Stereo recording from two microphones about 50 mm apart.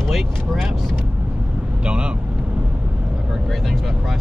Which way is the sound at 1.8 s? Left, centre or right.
Centre.